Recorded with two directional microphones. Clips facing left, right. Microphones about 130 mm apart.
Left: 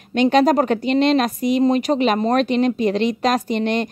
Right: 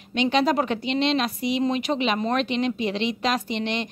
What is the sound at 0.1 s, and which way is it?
Speech, 50° left (ahead or behind).